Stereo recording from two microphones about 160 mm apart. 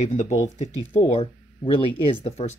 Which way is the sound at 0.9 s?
35° left (ahead or behind).